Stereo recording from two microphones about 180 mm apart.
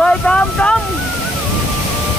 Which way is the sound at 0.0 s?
5° left (ahead or behind).